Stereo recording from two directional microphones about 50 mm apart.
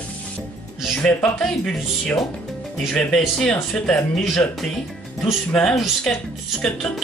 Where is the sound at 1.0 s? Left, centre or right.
Centre.